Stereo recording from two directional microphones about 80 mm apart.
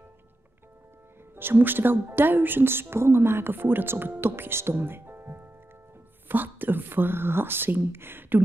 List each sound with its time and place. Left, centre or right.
1.3 s speech: right